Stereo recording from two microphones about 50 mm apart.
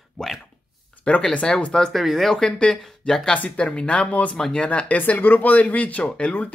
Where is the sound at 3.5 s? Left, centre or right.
Left.